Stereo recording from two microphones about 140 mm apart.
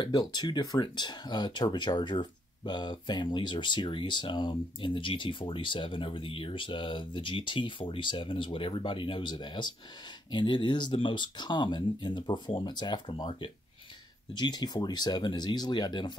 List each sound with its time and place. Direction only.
0.0 s speech: 30° left (ahead or behind)